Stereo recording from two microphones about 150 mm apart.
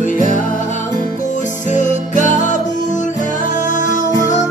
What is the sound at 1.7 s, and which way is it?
Music, 55° left (ahead or behind).